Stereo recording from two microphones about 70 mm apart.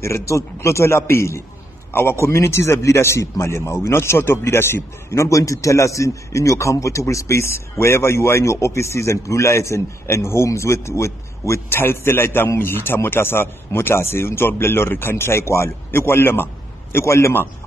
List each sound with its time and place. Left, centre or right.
0.0 s a man's voice: left